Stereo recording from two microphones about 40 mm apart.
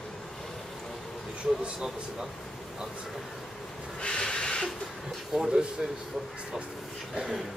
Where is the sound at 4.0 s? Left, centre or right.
Left.